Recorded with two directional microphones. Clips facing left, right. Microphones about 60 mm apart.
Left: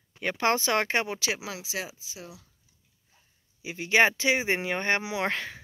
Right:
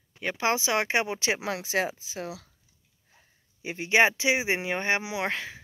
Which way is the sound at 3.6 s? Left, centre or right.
Right.